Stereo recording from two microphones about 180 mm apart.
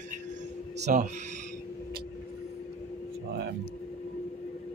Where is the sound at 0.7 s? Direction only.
40° right (ahead or behind).